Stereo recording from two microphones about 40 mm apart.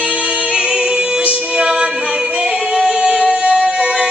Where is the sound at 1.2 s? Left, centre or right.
Right.